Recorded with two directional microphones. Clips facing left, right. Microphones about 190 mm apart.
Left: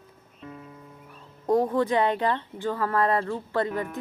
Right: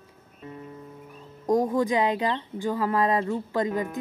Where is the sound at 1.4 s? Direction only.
15° right (ahead or behind).